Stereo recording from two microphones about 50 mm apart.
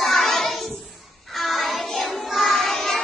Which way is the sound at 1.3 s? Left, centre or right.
Centre.